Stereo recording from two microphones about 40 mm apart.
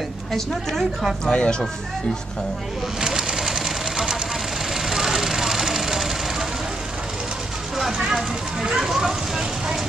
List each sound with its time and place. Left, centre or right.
0.3 s a woman's voice: centre
1.2 s speech: left
3.0 s pigeon: centre
4.7 s vehicle: centre
7.7 s vehicle: centre
8.6 s speech: centre